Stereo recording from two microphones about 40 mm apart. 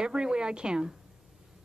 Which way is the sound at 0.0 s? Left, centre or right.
Right.